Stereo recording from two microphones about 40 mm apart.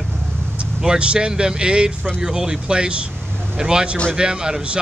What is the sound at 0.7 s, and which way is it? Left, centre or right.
Speech, right.